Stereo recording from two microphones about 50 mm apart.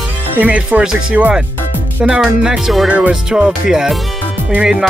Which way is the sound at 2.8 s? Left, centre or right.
Right.